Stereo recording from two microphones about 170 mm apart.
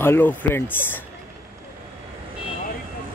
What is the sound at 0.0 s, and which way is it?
Speech, 10° left (ahead or behind).